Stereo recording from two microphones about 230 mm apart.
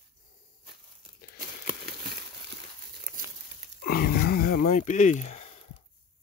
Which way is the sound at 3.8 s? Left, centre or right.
Left.